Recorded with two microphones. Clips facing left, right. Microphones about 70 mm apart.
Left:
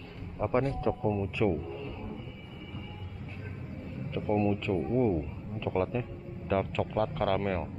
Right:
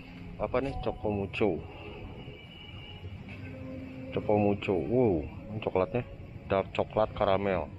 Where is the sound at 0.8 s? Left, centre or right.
Left.